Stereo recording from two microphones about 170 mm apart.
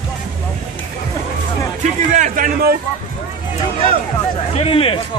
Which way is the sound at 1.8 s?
50° right (ahead or behind).